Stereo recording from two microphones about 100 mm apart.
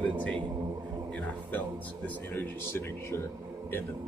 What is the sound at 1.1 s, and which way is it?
A man's voice, 15° left (ahead or behind).